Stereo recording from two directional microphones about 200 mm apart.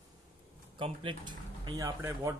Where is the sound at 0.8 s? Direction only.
25° right (ahead or behind).